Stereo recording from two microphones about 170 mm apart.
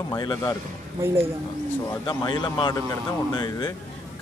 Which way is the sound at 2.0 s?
25° left (ahead or behind).